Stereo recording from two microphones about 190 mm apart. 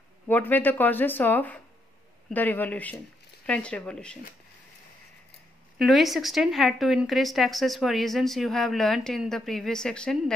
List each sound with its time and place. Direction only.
0.3 s a woman's voice: 10° left (ahead or behind)
5.8 s a woman's voice: centre (ahead or behind)